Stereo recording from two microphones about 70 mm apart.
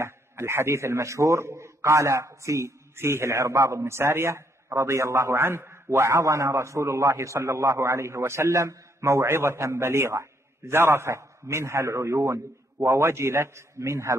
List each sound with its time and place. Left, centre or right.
0.0 s a man's voice: right